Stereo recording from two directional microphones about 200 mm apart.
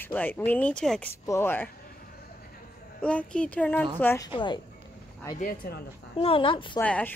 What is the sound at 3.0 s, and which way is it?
Speech, 5° left (ahead or behind).